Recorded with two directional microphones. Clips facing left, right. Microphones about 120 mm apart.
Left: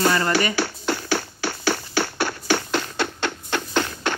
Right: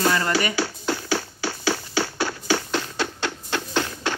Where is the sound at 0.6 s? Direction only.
65° left (ahead or behind).